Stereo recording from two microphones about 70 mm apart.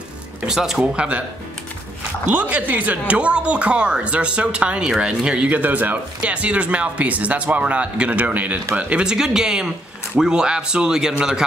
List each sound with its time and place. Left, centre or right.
0.5 s speech: centre
2.3 s speech: right
9.0 s speech: centre